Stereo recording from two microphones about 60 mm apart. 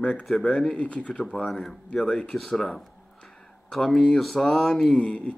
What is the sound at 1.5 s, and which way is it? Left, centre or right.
Speech, centre.